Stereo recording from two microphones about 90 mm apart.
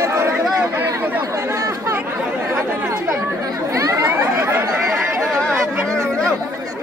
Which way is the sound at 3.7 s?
35° right (ahead or behind).